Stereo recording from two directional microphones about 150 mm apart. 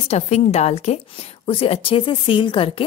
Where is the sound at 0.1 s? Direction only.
45° left (ahead or behind).